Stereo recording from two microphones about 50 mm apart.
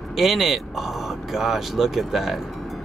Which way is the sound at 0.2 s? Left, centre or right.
Centre.